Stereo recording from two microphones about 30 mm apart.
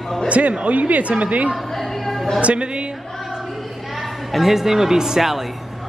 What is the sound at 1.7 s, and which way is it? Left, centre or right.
Music, centre.